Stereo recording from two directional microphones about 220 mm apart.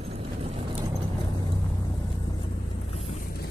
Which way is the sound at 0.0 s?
25° right (ahead or behind).